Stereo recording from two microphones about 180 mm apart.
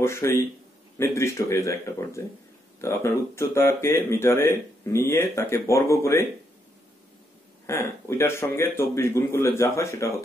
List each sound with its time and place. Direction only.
0.0 s speech: 15° left (ahead or behind)
7.6 s speech: 15° left (ahead or behind)